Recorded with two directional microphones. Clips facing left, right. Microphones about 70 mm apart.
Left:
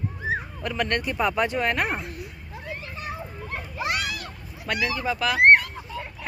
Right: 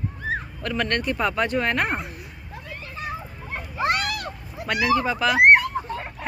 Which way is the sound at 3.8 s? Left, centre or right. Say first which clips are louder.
Right 5 dB; right.